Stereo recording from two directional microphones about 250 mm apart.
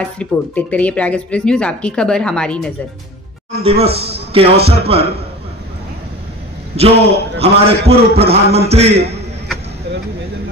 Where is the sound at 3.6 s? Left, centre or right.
Right.